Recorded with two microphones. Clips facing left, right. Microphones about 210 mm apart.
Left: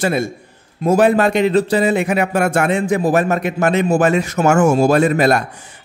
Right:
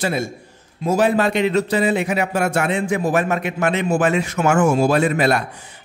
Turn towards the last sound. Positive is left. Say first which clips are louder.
# left 4 dB
turn(degrees=45)  # may be behind; listen again after turning